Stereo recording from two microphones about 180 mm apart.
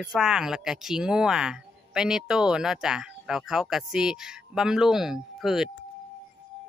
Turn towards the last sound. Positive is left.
turn(degrees=0)  # may be behind; listen again after turning